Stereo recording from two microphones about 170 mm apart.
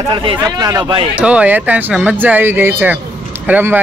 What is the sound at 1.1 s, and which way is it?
Speech, 5° right (ahead or behind).